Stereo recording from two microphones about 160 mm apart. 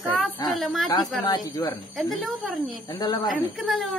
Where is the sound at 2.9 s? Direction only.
25° left (ahead or behind).